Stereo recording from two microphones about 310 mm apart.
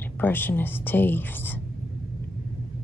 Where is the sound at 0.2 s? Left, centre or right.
Centre.